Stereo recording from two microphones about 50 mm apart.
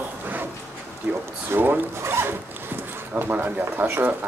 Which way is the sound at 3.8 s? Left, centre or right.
Right.